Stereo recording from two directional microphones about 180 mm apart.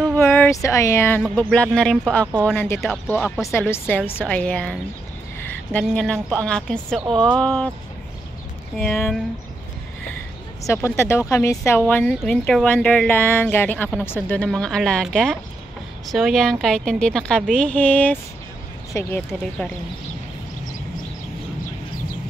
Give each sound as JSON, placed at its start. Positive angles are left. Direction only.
{"t": 0.1, "sound": "a woman's voice", "side_deg": 10}
{"t": 8.7, "sound": "a woman's voice", "side_deg": 5}
{"t": 10.6, "sound": "a woman's voice", "side_deg": 15}